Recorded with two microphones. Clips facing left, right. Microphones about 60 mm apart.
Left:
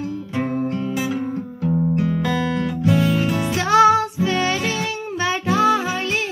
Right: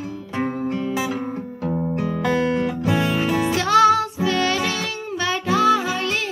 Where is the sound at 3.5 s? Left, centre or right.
Left.